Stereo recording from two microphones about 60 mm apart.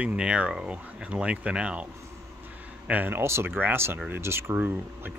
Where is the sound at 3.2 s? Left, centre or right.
Right.